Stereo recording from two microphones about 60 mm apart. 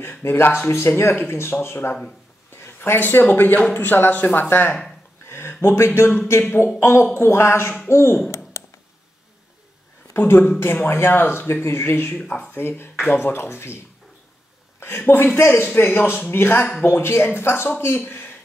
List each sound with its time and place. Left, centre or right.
0.2 s speech: left
5.2 s a sound: left
6.8 s speech: left
8.5 s a sound: left
10.1 s speech: left
12.1 s speech: left
12.5 s speech: left
14.8 s speech: left